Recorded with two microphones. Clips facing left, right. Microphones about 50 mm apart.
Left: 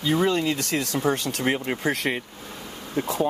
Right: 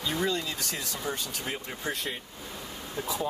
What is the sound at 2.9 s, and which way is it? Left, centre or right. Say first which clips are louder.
Speech: left 8 dB; left.